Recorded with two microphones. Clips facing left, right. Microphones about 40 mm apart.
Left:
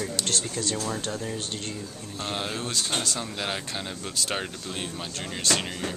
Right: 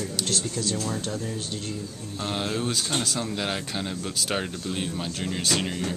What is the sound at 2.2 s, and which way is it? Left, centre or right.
Speech, centre.